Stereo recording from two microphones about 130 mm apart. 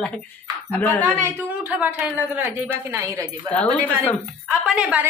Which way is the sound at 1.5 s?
10° right (ahead or behind).